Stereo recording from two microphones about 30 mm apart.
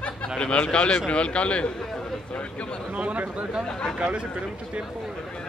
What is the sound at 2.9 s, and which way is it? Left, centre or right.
A man's voice, right.